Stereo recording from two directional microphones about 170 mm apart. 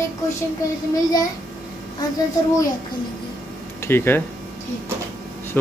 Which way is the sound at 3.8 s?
15° left (ahead or behind).